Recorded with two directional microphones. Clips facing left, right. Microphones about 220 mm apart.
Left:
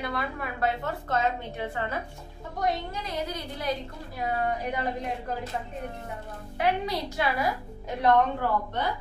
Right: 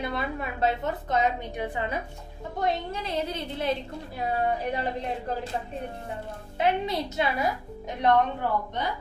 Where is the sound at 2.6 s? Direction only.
25° right (ahead or behind).